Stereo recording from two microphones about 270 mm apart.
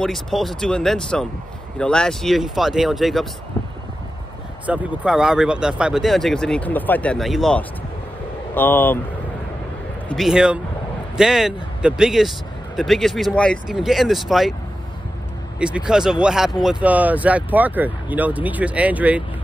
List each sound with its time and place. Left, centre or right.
0.0 s speech: centre
4.6 s speech: centre
10.0 s speech: centre
15.6 s speech: centre